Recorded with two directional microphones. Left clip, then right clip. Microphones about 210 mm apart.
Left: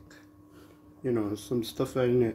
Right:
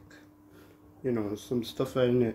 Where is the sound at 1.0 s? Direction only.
10° left (ahead or behind).